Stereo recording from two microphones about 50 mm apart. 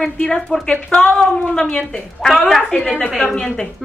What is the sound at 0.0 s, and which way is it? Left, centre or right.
A woman's voice, centre.